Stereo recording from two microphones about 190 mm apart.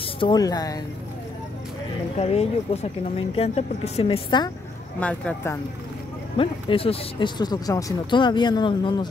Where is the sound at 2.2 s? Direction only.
35° left (ahead or behind).